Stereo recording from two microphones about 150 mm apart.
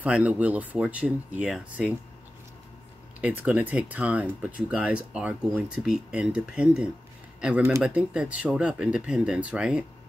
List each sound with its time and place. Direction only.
0.0 s speech: 10° right (ahead or behind)
3.2 s speech: 10° right (ahead or behind)